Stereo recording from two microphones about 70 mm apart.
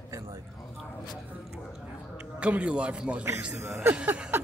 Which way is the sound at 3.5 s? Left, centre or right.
Right.